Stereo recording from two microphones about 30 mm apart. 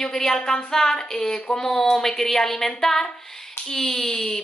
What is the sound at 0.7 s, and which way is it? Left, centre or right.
Speech, centre.